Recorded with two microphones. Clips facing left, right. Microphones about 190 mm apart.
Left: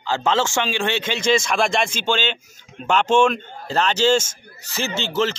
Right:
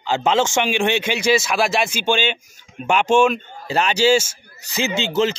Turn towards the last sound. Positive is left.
turn(degrees=-15)  # may be behind; listen again after turning